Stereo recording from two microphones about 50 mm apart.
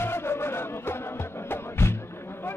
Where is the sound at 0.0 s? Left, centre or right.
Left.